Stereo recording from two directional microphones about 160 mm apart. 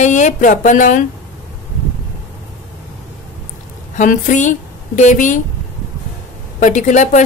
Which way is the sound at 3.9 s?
55° left (ahead or behind).